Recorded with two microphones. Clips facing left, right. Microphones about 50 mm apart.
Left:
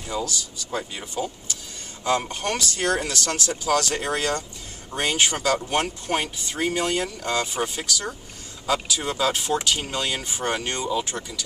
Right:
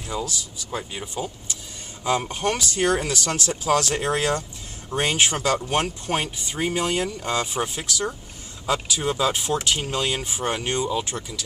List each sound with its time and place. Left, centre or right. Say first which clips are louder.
0.1 s speech: left 1 dB; centre